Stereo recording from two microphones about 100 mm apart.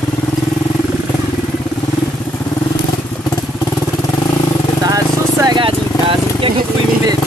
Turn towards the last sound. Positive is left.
turn(degrees=-60)  # may be behind; listen again after turning